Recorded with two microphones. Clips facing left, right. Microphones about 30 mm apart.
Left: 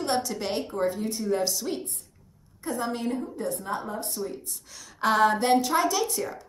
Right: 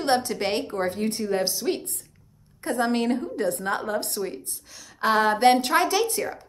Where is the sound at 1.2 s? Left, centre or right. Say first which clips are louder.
Even; right.